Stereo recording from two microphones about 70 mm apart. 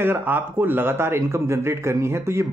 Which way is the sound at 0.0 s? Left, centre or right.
Right.